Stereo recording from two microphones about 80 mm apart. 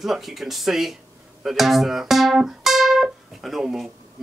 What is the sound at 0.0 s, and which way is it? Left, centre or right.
Speech, centre.